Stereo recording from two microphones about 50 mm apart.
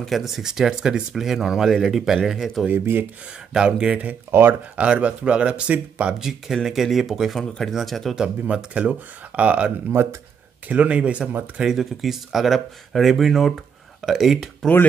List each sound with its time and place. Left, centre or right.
0.0 s speech: centre
2.7 s speech: right
3.5 s speech: centre
4.3 s speech: right
4.7 s speech: right
6.1 s speech: centre
7.3 s speech: centre
8.2 s speech: centre
9.9 s speech: right
10.7 s speech: right
11.5 s speech: centre